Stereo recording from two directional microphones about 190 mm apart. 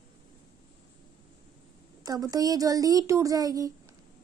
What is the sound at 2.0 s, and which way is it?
Speech, 20° right (ahead or behind).